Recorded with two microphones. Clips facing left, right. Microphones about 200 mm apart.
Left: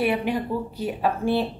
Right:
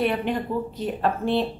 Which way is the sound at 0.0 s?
5° left (ahead or behind).